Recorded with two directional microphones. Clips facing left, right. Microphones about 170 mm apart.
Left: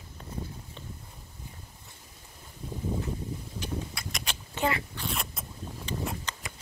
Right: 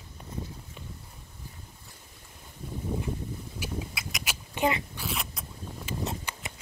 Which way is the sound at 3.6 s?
5° right (ahead or behind).